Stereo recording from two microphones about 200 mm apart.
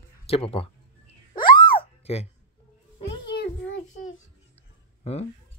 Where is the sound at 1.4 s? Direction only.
30° left (ahead or behind).